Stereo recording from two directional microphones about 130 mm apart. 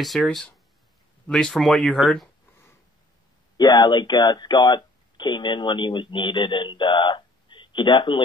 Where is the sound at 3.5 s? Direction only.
30° left (ahead or behind).